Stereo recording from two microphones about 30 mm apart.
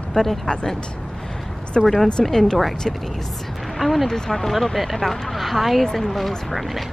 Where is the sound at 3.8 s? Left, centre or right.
Centre.